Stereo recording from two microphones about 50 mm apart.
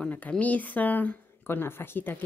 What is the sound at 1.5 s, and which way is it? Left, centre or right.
Speech, left.